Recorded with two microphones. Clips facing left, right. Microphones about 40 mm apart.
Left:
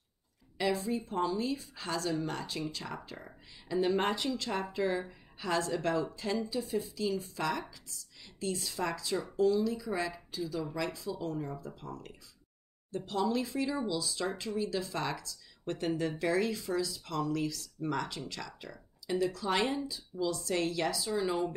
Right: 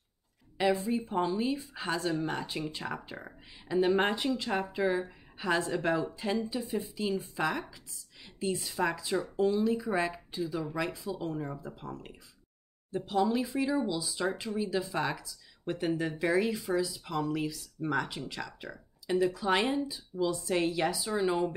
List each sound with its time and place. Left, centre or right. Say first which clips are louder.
0.6 s speech: right 3 dB; right